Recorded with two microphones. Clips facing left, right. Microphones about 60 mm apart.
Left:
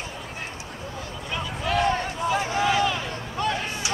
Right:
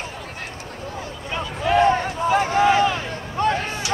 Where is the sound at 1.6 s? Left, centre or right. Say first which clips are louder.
Right 6 dB; right.